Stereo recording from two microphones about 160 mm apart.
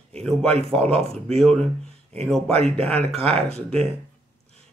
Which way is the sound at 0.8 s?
40° right (ahead or behind).